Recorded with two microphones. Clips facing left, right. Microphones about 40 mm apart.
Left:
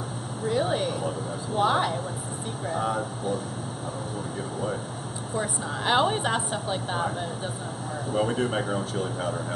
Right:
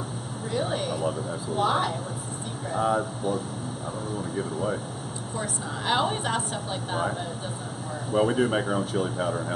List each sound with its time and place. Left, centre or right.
0.5 s a woman's voice: centre
4.4 s speech: centre
5.3 s a woman's voice: centre
8.1 s speech: centre